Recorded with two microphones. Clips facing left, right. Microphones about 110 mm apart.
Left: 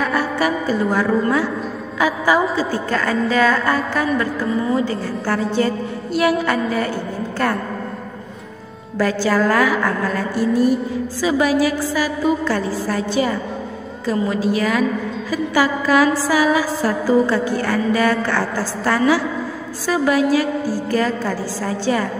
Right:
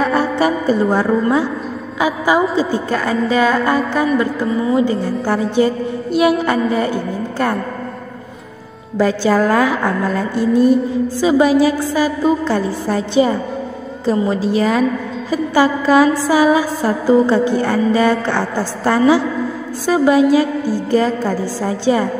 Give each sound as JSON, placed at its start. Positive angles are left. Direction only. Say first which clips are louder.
{"t": 0.0, "sound": "music", "louder": "right 4 dB", "side_deg": -25}
{"t": 2.0, "sound": "a woman's voice", "louder": "right 2 dB", "side_deg": -20}
{"t": 8.9, "sound": "a woman's voice", "louder": "right 3 dB", "side_deg": -20}